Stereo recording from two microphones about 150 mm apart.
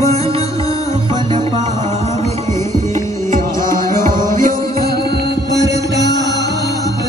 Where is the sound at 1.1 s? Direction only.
30° right (ahead or behind).